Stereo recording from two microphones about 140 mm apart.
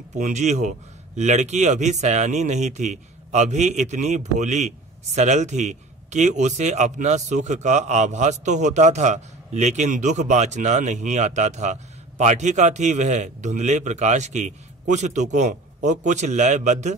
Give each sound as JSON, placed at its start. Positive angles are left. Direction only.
{"t": 0.1, "sound": "speech", "side_deg": -55}